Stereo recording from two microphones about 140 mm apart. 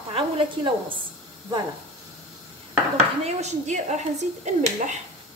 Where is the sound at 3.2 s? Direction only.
55° right (ahead or behind).